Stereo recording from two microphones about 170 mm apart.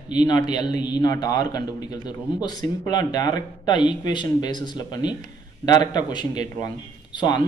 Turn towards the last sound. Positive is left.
turn(degrees=25)  # may be behind; listen again after turning